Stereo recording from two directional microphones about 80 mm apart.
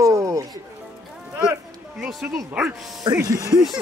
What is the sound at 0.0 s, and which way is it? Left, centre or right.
Music, right.